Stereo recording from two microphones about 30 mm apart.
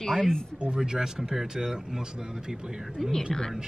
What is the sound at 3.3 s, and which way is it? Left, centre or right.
Speech, centre.